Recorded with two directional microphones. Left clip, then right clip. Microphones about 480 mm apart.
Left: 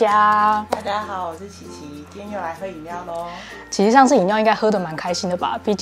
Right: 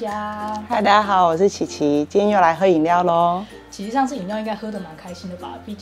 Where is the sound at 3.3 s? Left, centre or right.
Left.